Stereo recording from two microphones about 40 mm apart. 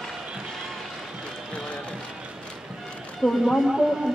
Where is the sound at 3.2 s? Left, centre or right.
Centre.